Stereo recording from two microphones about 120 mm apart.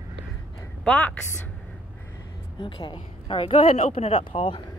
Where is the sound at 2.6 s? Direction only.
40° left (ahead or behind).